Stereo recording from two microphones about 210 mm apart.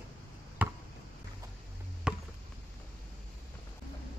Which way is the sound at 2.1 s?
5° right (ahead or behind).